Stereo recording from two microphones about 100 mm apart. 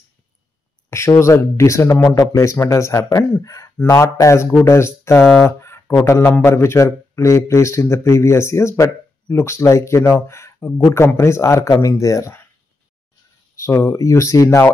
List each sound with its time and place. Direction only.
0.8 s a man's voice: 25° left (ahead or behind)
5.2 s speech: centre (ahead or behind)
5.6 s a sound: 25° left (ahead or behind)
6.0 s a man's voice: 30° left (ahead or behind)
13.6 s speech: 30° left (ahead or behind)